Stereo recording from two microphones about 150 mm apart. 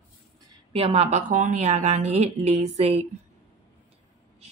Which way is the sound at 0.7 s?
40° right (ahead or behind).